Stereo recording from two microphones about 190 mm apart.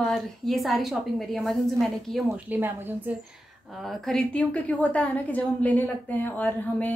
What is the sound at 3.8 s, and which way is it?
A woman's voice, centre (ahead or behind).